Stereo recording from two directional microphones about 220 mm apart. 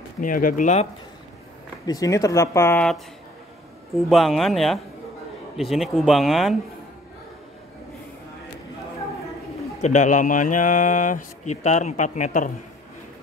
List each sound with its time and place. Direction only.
0.2 s speech: 40° left (ahead or behind)
1.9 s speech: 15° left (ahead or behind); by 6.5 s centre (ahead or behind)
9.8 s speech: 30° left (ahead or behind)